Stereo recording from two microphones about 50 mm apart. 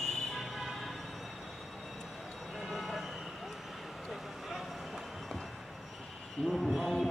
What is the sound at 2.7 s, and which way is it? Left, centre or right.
Vehicle, centre.